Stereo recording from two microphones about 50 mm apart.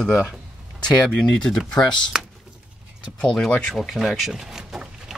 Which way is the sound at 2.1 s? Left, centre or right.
Centre.